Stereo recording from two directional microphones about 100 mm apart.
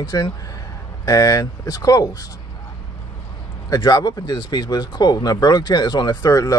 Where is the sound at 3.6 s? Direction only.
40° left (ahead or behind).